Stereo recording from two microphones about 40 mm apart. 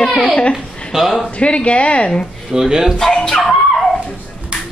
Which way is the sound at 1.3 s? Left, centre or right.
Left.